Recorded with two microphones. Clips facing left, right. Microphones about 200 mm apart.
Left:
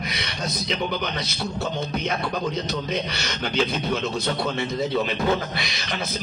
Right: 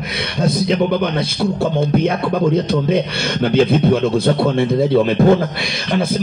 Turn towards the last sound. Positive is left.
turn(degrees=-55)  # may be behind; listen again after turning